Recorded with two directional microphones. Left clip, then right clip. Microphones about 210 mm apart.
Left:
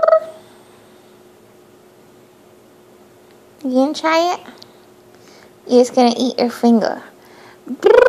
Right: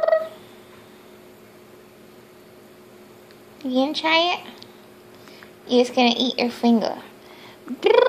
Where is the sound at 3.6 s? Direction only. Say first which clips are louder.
Left 5 dB; 30° left (ahead or behind).